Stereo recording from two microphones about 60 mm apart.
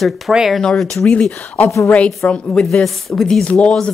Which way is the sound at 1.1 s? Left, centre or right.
Centre.